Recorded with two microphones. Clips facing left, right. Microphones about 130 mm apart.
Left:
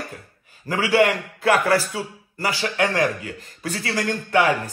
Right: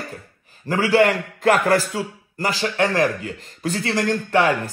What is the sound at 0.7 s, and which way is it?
A man's voice, 40° right (ahead or behind).